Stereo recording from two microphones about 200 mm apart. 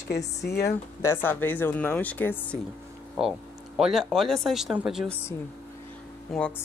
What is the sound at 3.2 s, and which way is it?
Speech, centre (ahead or behind).